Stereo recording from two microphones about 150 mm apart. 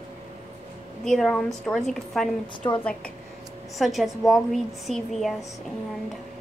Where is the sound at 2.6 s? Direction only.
25° left (ahead or behind).